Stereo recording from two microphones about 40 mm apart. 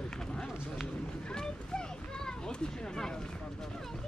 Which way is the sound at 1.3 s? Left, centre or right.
Centre.